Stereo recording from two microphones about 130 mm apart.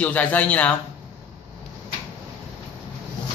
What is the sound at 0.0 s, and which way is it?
Speech, 10° left (ahead or behind).